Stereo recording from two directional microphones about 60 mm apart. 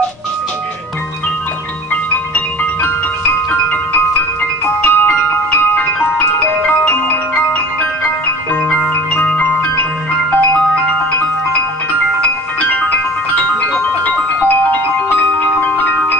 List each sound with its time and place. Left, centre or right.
3.6 s music: left
9.1 s music: left
15.6 s marimba: left